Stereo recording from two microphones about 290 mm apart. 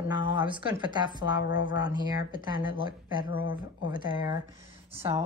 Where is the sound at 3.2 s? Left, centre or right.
Left.